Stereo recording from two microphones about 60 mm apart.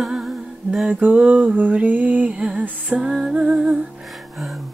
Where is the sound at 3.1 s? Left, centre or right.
Centre.